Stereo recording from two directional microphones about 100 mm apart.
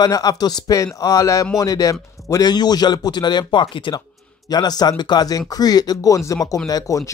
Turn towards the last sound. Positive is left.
turn(degrees=35)  # may be behind; listen again after turning